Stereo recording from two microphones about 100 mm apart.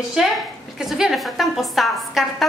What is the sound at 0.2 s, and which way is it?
A woman's voice, 5° right (ahead or behind).